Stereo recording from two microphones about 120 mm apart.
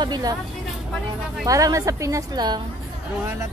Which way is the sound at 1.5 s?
30° right (ahead or behind).